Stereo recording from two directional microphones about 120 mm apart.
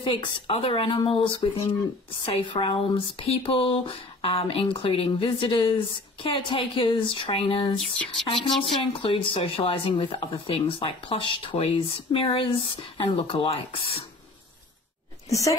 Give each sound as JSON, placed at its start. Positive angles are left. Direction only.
{"t": 0.0, "sound": "speech", "side_deg": 45}
{"t": 15.2, "sound": "speech", "side_deg": 25}